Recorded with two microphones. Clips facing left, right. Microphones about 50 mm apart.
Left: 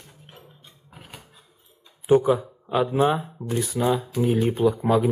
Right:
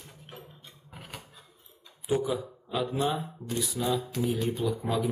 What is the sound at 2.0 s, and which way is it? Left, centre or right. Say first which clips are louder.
Speech: left 10 dB; left.